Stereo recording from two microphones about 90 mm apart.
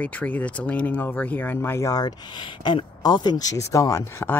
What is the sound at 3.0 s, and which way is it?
Speech, 50° left (ahead or behind).